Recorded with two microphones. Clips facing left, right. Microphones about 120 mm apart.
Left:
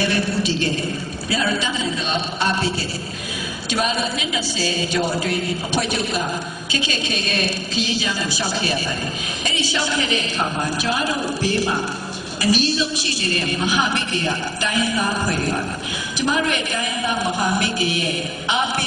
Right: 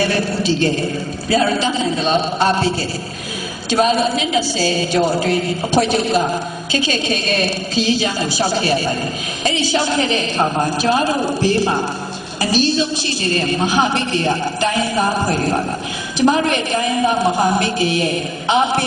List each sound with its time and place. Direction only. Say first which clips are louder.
0.0 s a woman's voice: right 3 dB; 40° right (ahead or behind)
3.7 s a woman's voice: right 7 dB; 40° right (ahead or behind)